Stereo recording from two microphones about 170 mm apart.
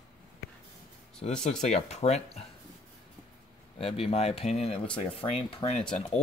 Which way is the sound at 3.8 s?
35° left (ahead or behind).